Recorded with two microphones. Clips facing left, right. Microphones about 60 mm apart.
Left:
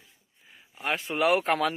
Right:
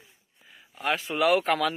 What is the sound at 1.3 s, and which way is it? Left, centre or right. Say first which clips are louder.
Speech: right 1 dB; left.